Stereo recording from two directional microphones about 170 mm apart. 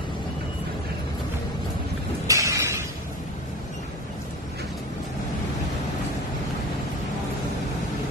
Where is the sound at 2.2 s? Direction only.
20° right (ahead or behind).